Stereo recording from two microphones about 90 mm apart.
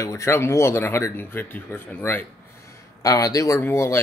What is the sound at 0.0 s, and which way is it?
Speech, 35° left (ahead or behind).